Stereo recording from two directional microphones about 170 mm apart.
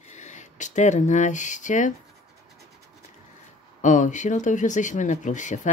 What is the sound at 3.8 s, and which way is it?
A child's voice, 45° left (ahead or behind).